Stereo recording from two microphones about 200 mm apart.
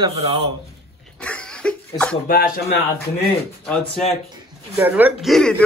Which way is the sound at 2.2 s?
45° left (ahead or behind).